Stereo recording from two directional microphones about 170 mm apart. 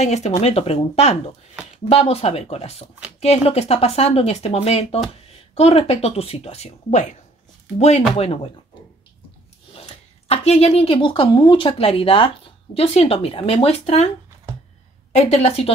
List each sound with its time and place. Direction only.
0.0 s speech: 40° left (ahead or behind)
9.8 s speech: 35° left (ahead or behind)
15.1 s speech: 40° left (ahead or behind)